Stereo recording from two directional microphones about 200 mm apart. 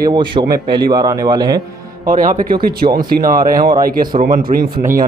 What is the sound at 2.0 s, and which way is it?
Speech, 45° right (ahead or behind).